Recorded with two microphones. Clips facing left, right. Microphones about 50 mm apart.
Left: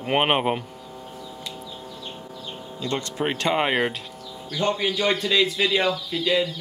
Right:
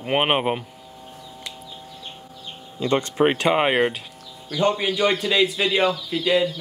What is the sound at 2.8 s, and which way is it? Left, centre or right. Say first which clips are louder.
Speech: right 7 dB; right.